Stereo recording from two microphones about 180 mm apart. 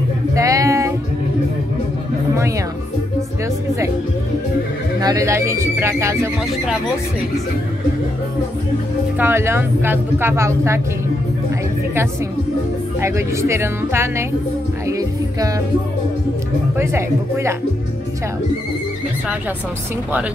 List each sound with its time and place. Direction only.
0.3 s a sound: 20° right (ahead or behind)
5.0 s speech: 15° right (ahead or behind)
9.2 s speech: 15° right (ahead or behind)
13.0 s speech: 15° right (ahead or behind)
14.9 s music: 20° right (ahead or behind)
16.7 s speech: 15° right (ahead or behind)